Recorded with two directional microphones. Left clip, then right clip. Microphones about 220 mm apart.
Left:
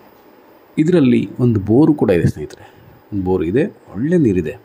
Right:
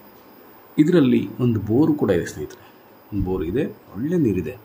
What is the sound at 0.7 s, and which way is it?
Speech, 20° left (ahead or behind).